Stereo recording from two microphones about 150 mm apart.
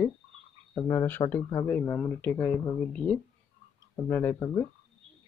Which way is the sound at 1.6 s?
10° left (ahead or behind).